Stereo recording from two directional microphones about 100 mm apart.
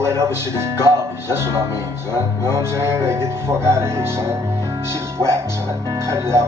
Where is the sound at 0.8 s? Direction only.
25° right (ahead or behind).